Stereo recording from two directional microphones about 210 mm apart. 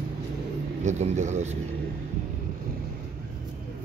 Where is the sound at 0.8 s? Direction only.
35° right (ahead or behind).